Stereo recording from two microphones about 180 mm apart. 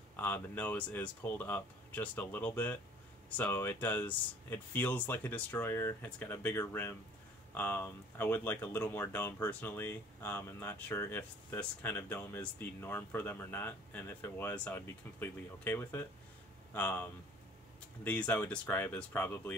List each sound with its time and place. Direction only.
0.1 s speech: 10° left (ahead or behind)